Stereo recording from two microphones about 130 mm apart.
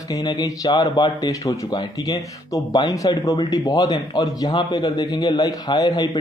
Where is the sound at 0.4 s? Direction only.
30° left (ahead or behind).